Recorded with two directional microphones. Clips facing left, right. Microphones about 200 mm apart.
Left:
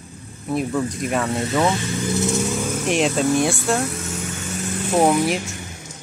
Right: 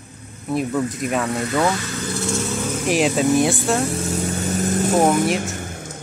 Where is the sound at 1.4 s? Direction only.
25° left (ahead or behind).